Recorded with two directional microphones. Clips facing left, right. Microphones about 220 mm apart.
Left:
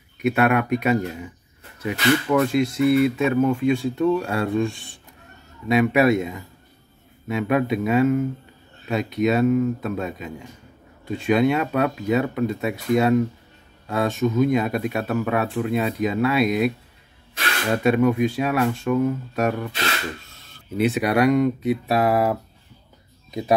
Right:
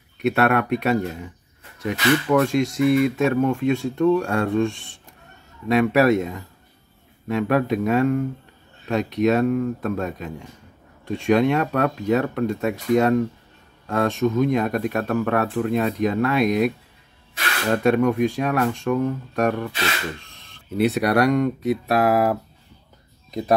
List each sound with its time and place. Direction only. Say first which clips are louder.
0.2 s speech: even; centre (ahead or behind)
5.7 s speech: right 1 dB; centre (ahead or behind)
20.8 s speech: even; centre (ahead or behind)